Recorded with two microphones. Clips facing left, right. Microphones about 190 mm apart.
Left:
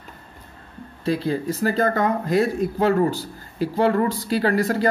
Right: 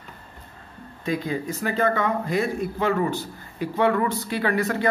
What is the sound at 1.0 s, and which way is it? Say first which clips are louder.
Speech: left 4 dB; 35° left (ahead or behind).